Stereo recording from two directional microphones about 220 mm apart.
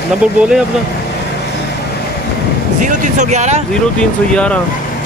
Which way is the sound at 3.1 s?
30° right (ahead or behind).